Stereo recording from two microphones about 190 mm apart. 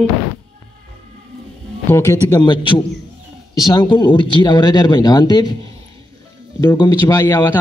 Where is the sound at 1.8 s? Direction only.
15° left (ahead or behind).